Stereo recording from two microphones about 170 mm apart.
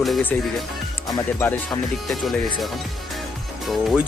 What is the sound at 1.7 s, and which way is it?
Speech, centre (ahead or behind).